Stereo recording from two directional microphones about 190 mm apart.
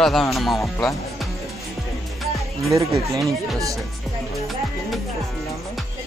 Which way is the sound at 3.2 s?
15° right (ahead or behind).